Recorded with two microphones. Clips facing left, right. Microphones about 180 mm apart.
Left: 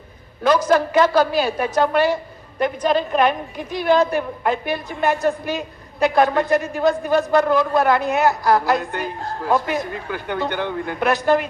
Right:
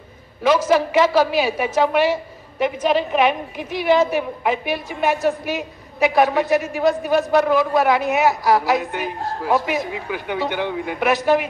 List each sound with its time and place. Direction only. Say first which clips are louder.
0.5 s a woman's voice: even; 5° right (ahead or behind)